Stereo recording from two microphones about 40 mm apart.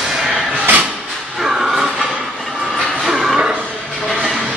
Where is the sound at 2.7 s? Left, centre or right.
Centre.